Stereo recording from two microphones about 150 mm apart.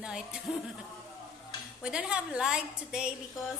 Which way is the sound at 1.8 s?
5° right (ahead or behind).